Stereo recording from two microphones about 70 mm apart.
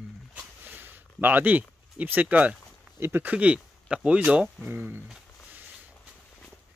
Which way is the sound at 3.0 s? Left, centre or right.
Right.